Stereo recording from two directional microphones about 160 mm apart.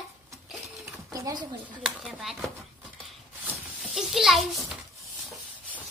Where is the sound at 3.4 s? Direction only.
5° right (ahead or behind).